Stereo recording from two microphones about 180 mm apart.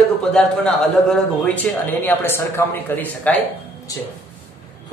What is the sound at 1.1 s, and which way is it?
Speech, 5° left (ahead or behind).